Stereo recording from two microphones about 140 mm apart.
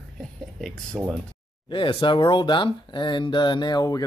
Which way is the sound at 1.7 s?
35° left (ahead or behind).